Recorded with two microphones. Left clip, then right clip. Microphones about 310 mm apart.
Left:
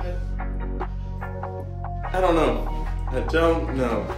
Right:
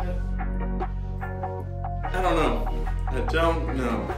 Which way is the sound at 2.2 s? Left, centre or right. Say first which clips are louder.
Left 3 dB; centre.